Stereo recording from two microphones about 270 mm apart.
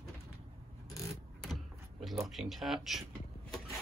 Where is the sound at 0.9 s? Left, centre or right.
Centre.